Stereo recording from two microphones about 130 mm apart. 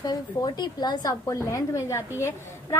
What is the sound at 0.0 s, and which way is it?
A woman's voice, 30° left (ahead or behind).